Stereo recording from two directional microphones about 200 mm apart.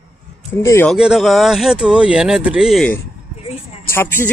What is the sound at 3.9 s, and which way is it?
Speech, 10° left (ahead or behind).